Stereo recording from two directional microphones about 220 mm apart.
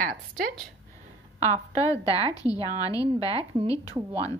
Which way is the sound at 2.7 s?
15° left (ahead or behind).